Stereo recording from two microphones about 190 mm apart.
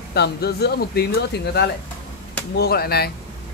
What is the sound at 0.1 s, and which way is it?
Speech, 60° left (ahead or behind).